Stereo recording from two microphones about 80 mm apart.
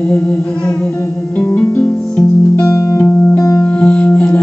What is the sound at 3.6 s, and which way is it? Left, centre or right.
Music, centre.